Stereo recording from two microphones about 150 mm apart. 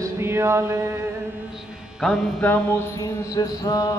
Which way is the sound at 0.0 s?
15° right (ahead or behind).